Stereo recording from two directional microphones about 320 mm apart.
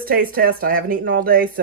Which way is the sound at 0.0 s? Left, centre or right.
Right.